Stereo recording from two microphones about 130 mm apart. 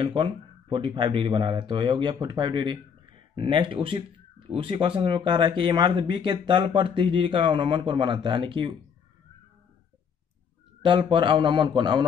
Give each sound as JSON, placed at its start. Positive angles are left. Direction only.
{"t": 0.0, "sound": "speech", "side_deg": -40}
{"t": 10.8, "sound": "speech", "side_deg": -40}